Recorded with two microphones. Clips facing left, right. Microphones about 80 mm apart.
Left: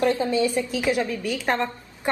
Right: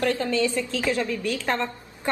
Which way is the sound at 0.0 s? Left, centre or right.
Centre.